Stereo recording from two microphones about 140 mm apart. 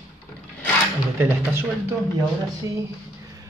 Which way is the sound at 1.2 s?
15° right (ahead or behind).